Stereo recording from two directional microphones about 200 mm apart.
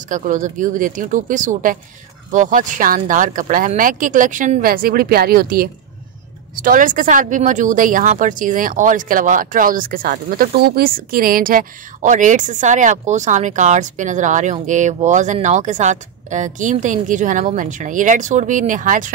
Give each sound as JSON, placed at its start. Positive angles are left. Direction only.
{"t": 0.1, "sound": "speech", "side_deg": -40}